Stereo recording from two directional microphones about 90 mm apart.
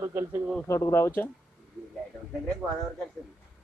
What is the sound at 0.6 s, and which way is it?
Speech, 30° left (ahead or behind).